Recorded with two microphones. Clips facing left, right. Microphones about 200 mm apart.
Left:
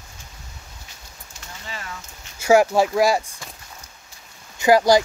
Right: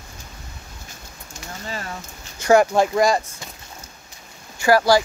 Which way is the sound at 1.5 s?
40° right (ahead or behind).